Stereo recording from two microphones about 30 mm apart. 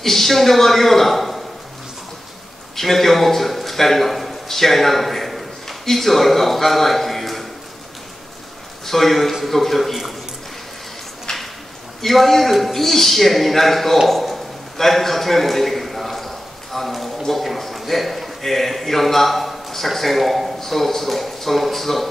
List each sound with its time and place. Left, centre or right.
0.0 s a man's voice: centre
2.7 s a man's voice: centre
8.8 s a man's voice: centre
11.3 s a sound: centre
12.0 s a man's voice: centre
14.8 s a sound: centre
17.3 s a man's voice: centre